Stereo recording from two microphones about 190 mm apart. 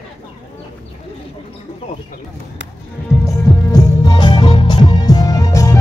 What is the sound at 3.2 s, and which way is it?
Music, 20° left (ahead or behind).